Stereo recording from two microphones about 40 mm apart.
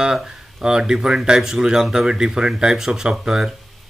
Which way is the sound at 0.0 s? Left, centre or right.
Centre.